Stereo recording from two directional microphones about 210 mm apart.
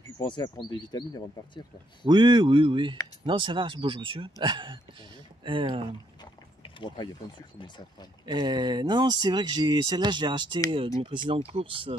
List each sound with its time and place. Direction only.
0.2 s speech: 20° left (ahead or behind)
2.0 s speech: 20° right (ahead or behind)
6.6 s speech: 20° left (ahead or behind)
8.3 s speech: 20° right (ahead or behind)